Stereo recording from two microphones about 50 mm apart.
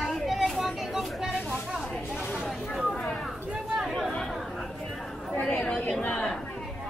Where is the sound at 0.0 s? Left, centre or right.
Centre.